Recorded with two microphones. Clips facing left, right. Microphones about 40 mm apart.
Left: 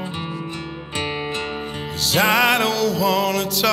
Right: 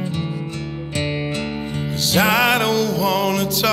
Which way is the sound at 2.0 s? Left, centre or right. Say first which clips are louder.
Even; centre.